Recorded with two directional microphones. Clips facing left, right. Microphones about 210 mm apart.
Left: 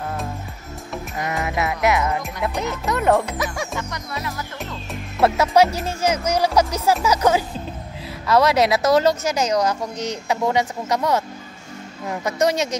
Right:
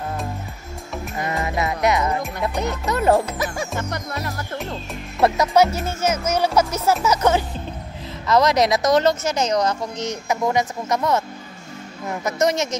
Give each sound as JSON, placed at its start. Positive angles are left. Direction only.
{"t": 1.3, "sound": "speech", "side_deg": 5}
{"t": 3.7, "sound": "music", "side_deg": -45}
{"t": 5.2, "sound": "speech", "side_deg": 5}
{"t": 5.7, "sound": "speech", "side_deg": 35}
{"t": 6.0, "sound": "speech", "side_deg": 15}
{"t": 12.3, "sound": "speech", "side_deg": 10}